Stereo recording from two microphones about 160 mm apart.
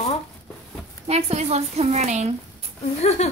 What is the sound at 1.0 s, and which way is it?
A woman's voice, 40° right (ahead or behind).